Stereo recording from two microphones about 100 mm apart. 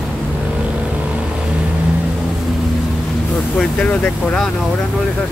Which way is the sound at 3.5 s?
10° left (ahead or behind).